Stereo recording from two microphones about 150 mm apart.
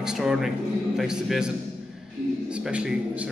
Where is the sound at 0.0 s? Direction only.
5° right (ahead or behind).